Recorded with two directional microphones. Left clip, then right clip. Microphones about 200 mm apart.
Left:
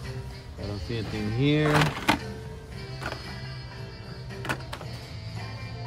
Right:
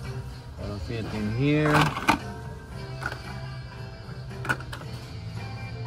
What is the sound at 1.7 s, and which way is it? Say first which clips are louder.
Speech: right 2 dB; centre (ahead or behind).